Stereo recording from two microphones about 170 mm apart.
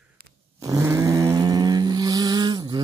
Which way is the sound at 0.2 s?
60° right (ahead or behind).